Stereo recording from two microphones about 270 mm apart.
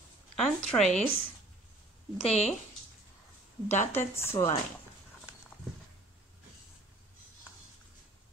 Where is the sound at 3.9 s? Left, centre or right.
Centre.